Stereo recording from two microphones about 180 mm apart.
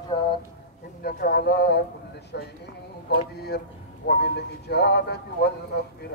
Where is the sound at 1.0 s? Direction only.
60° left (ahead or behind).